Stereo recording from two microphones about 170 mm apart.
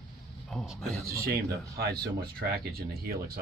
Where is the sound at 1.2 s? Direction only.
65° right (ahead or behind).